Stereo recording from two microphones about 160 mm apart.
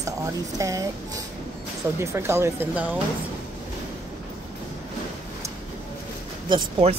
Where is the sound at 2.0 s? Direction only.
15° right (ahead or behind).